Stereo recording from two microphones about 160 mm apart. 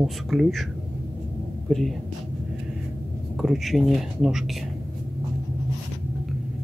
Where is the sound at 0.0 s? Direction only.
Centre (ahead or behind).